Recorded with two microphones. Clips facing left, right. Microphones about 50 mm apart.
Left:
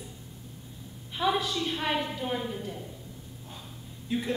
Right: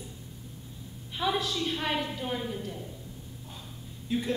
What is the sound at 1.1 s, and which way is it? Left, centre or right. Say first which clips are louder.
Speech: left 2 dB; centre.